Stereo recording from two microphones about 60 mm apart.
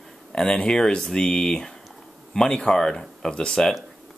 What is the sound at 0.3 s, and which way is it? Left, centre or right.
Speech, centre.